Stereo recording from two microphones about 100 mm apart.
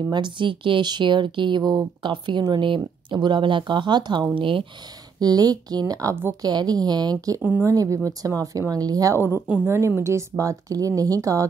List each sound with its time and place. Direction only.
0.1 s speech: 50° right (ahead or behind)
5.2 s speech: 40° right (ahead or behind)
9.7 s speech: 25° right (ahead or behind)